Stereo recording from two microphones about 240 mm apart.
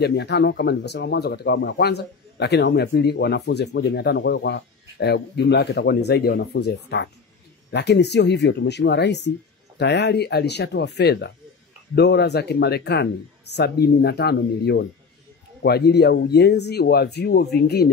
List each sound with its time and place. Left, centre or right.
0.0 s speech: left